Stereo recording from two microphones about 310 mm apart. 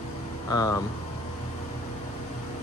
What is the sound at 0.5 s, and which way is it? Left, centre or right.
Speech, centre.